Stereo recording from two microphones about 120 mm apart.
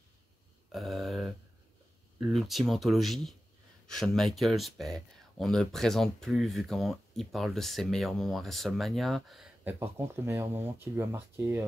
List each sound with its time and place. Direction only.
0.7 s a sound: centre (ahead or behind)
2.2 s speech: centre (ahead or behind)
9.7 s speech: 20° right (ahead or behind)